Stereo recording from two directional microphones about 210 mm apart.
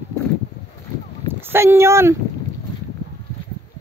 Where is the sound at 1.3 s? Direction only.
10° right (ahead or behind).